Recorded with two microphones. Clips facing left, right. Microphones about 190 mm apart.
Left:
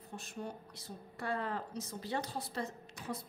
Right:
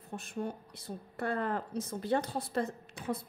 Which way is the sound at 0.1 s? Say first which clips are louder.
Right 6 dB; 55° right (ahead or behind).